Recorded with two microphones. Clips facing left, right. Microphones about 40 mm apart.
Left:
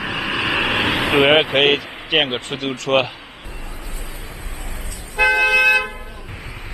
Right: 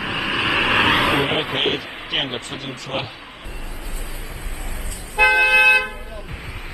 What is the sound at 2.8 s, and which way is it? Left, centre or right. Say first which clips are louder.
Speech: left 11 dB; left.